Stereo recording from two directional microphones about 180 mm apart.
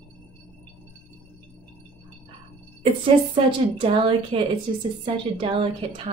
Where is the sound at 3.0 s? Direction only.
30° right (ahead or behind).